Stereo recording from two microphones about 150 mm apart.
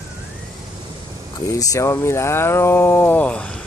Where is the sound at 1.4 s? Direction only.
20° left (ahead or behind).